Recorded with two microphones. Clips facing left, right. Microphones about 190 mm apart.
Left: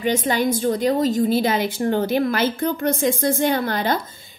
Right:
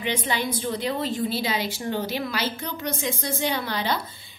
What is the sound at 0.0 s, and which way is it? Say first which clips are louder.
A woman's voice: left 7 dB; 45° left (ahead or behind).